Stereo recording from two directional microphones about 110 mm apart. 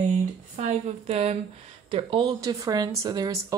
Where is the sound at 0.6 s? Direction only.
70° right (ahead or behind).